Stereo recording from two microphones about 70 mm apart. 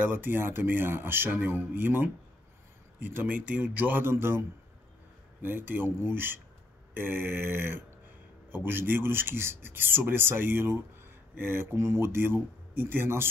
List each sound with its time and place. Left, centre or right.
0.1 s a man's voice: right